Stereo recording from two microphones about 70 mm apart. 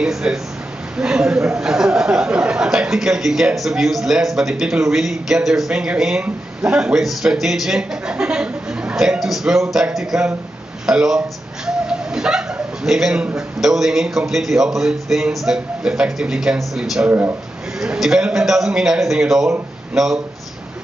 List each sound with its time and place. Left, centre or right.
0.0 s a man's voice: centre
7.0 s speech: centre
17.1 s a man's voice: right
17.7 s a man's voice: centre